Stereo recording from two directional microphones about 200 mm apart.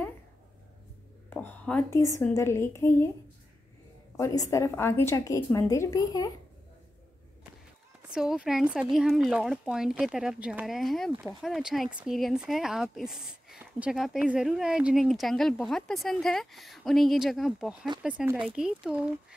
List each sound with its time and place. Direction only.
1.3 s a woman's voice: 10° left (ahead or behind)
4.2 s a woman's voice: 15° left (ahead or behind)
8.1 s speech: 5° right (ahead or behind)